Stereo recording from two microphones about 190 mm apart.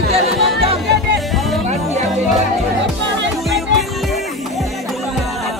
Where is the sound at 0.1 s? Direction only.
30° right (ahead or behind).